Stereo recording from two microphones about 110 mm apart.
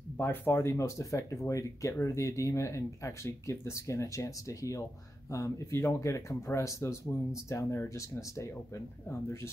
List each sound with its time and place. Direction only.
0.2 s speech: 20° left (ahead or behind)